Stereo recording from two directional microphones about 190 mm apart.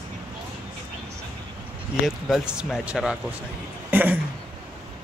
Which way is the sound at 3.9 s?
10° right (ahead or behind).